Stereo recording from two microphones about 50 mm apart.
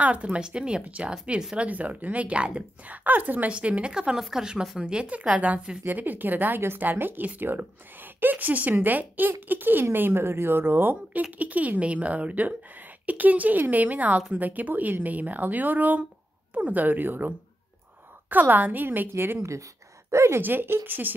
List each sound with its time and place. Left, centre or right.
0.0 s speech: right
3.5 s speech: right
5.9 s speech: right
11.3 s speech: right
18.3 s speech: right
20.1 s a woman's voice: right
20.3 s speech: right